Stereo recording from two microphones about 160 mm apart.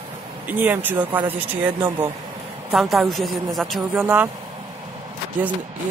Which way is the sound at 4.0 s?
10° right (ahead or behind).